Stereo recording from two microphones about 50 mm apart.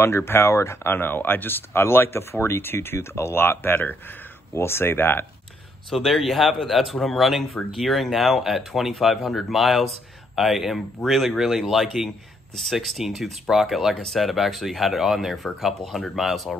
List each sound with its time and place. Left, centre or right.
0.0 s speech: left
0.8 s speech: left
4.6 s speech: left
5.9 s speech: centre
13.9 s speech: centre